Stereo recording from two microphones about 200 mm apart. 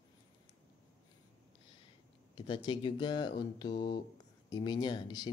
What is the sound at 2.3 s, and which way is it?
Speech, 25° left (ahead or behind).